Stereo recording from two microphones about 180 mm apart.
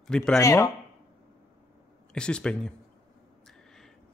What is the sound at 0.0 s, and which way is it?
Speech, 5° left (ahead or behind).